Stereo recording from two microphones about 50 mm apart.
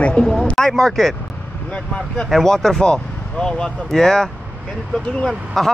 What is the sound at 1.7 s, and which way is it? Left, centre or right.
Speech, left.